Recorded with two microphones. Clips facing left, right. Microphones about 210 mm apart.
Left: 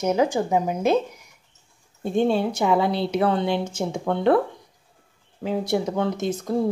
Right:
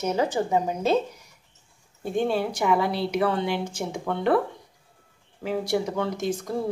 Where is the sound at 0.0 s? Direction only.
15° left (ahead or behind).